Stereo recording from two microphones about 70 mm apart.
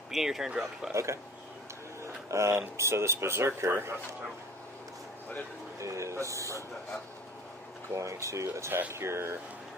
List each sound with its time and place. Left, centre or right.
0.1 s speech: centre
0.9 s speech: right
2.2 s speech: right
5.8 s speech: right
7.9 s speech: right